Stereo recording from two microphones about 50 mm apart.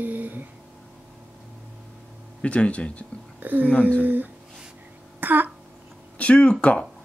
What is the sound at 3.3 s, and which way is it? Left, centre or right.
Speech, right.